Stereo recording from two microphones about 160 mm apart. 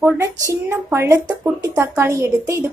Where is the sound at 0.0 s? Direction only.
20° right (ahead or behind).